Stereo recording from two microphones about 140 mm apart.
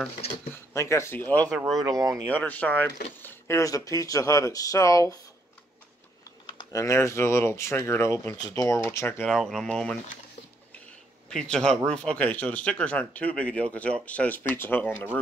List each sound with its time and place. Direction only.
0.5 s speech: 20° left (ahead or behind)
1.8 s speech: 25° right (ahead or behind)
2.3 s speech: 10° left (ahead or behind)
6.7 s speech: 20° left (ahead or behind)
9.3 s speech: centre (ahead or behind)
11.2 s speech: 5° left (ahead or behind)